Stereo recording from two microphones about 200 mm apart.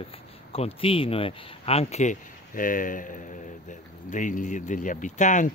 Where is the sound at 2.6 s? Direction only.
45° left (ahead or behind).